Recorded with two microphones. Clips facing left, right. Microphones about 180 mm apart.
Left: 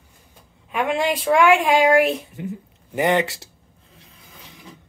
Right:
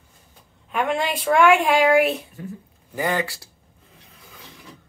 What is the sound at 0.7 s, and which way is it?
A woman's voice, 5° left (ahead or behind).